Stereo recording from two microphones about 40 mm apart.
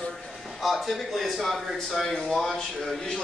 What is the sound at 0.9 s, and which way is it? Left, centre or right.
A man's voice, centre.